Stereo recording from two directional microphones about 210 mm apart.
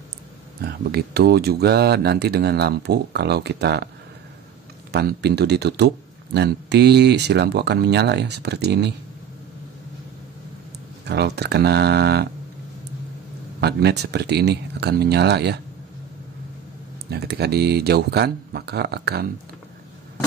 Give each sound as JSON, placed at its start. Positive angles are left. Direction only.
{"t": 0.6, "sound": "speech", "side_deg": -50}
{"t": 4.9, "sound": "speech", "side_deg": -50}
{"t": 11.1, "sound": "speech", "side_deg": -50}
{"t": 13.6, "sound": "speech", "side_deg": -50}
{"t": 17.1, "sound": "speech", "side_deg": -50}